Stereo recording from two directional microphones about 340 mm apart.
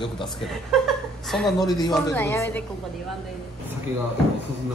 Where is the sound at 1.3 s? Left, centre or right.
Centre.